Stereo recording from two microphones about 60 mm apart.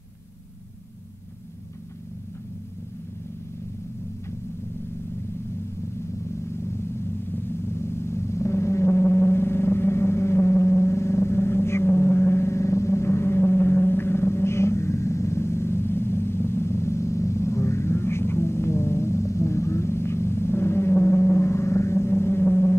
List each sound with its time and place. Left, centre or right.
6.2 s vehicle: left